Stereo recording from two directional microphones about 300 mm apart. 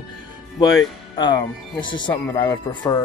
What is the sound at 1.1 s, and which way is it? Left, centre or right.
Speech, centre.